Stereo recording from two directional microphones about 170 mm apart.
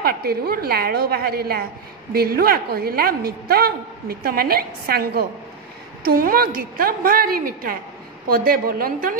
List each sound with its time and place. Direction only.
0.0 s a woman's voice: 65° right (ahead or behind)